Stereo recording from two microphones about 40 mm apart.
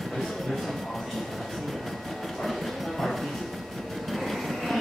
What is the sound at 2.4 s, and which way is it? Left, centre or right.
Music, centre.